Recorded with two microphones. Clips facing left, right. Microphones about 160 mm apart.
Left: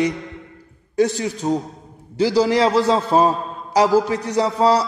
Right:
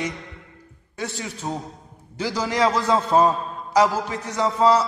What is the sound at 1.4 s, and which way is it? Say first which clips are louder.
Speech: left 8 dB; 20° left (ahead or behind).